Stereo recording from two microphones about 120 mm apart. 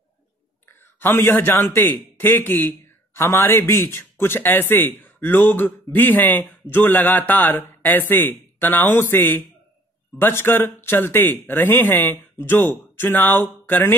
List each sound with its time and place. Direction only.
0.7 s a man's voice: 20° left (ahead or behind)